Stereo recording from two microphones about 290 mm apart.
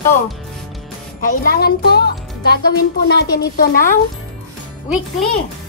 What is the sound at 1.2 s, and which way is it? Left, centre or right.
Speech, left.